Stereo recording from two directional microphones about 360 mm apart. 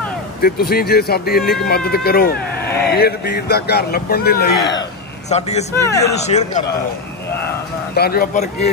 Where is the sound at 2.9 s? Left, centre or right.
Left.